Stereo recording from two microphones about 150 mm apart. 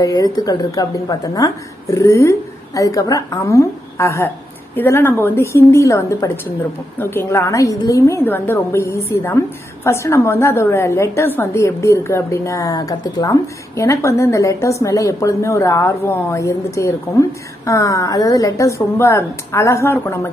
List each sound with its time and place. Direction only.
0.0 s a woman's voice: 25° left (ahead or behind)